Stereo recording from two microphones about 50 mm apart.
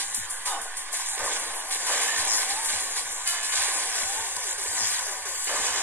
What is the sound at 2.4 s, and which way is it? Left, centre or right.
Music, right.